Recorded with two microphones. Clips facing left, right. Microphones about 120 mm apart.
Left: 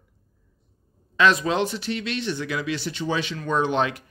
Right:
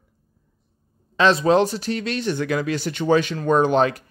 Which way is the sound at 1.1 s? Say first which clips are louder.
Right 4 dB; 30° right (ahead or behind).